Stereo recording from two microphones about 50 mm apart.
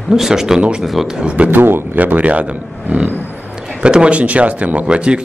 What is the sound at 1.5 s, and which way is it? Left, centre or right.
Speech, right.